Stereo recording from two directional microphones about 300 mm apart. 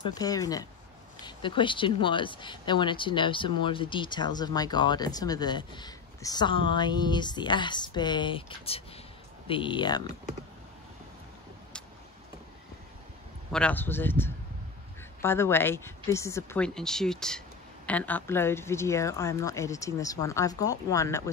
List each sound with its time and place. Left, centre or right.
0.1 s speech: centre
13.5 s speech: centre